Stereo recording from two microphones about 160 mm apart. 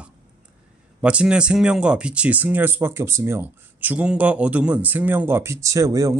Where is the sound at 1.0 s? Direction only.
5° right (ahead or behind).